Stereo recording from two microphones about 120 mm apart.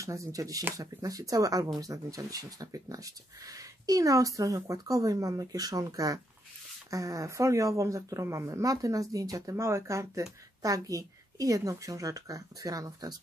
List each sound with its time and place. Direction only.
0.0 s speech: 25° right (ahead or behind)